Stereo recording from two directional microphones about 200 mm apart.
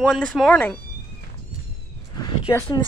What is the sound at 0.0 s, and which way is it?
Speech, centre (ahead or behind).